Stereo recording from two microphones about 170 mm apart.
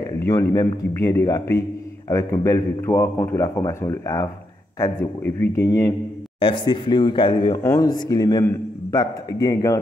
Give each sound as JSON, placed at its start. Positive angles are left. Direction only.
{"t": 0.2, "sound": "speech", "side_deg": 15}
{"t": 6.4, "sound": "a man's voice", "side_deg": 30}